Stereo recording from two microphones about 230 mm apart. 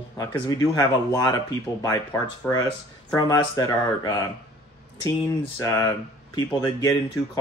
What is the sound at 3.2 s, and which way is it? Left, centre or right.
Speech, centre.